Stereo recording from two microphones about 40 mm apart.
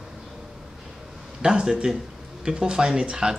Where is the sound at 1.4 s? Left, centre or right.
Centre.